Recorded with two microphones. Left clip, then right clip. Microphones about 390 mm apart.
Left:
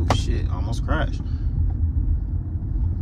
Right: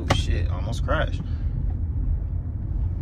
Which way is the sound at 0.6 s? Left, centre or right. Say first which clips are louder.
Right 2 dB; centre.